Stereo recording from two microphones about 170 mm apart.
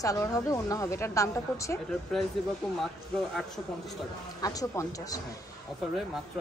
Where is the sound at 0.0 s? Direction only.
20° left (ahead or behind).